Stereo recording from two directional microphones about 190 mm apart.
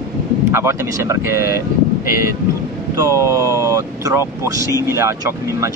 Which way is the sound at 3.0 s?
15° right (ahead or behind).